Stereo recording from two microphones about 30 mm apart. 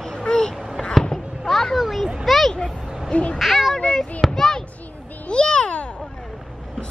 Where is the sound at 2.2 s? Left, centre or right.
Centre.